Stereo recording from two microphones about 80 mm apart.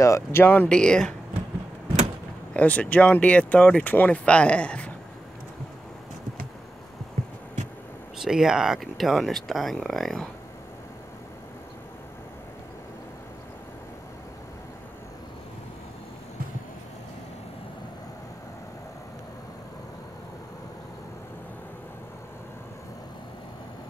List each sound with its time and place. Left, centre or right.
0.0 s speech: left
0.7 s speech: centre
2.5 s speech: centre
8.2 s speech: centre